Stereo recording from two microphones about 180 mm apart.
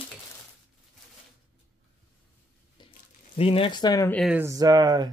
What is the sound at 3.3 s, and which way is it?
Speech, 30° left (ahead or behind).